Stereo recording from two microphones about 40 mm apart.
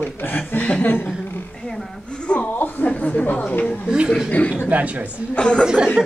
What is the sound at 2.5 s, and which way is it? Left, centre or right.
A woman's voice, left.